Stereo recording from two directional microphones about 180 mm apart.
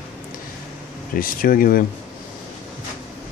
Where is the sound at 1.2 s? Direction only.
50° left (ahead or behind).